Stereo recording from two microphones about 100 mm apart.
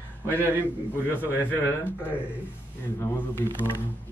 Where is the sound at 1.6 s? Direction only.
20° left (ahead or behind).